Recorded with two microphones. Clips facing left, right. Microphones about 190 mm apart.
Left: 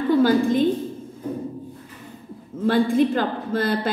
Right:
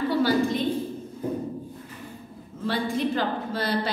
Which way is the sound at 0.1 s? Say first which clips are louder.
Left 7 dB; 50° left (ahead or behind).